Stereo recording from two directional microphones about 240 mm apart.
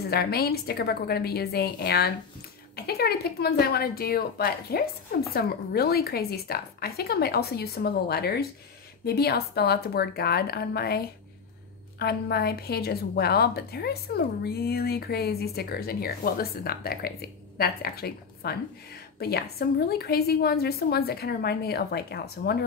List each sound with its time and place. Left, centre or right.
0.0 s a woman's voice: left